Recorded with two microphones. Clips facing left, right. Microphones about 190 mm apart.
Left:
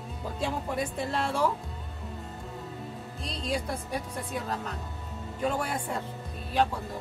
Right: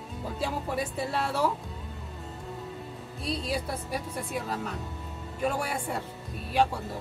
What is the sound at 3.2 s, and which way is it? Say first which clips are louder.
A woman's voice: right 1 dB; 5° right (ahead or behind).